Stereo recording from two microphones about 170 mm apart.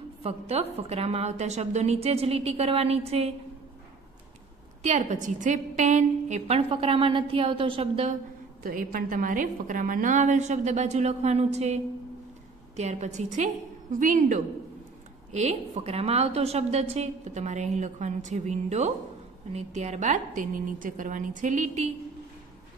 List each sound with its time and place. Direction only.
0.2 s a woman's voice: 35° right (ahead or behind)
4.8 s a woman's voice: 45° right (ahead or behind)
8.6 s a woman's voice: 55° right (ahead or behind)